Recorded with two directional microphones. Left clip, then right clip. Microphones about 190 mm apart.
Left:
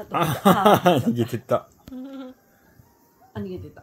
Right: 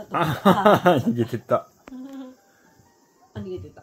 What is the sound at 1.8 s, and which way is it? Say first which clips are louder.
Insect: left 1 dB; 40° left (ahead or behind).